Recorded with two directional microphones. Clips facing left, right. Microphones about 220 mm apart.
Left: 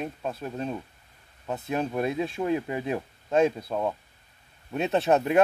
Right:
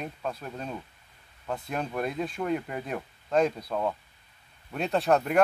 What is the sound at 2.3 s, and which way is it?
Speech, 25° left (ahead or behind).